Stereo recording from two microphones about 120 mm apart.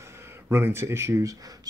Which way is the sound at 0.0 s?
20° right (ahead or behind).